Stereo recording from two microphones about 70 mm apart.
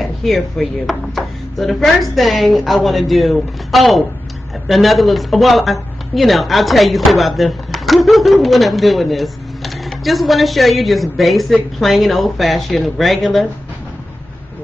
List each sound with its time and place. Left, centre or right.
0.0 s speech: centre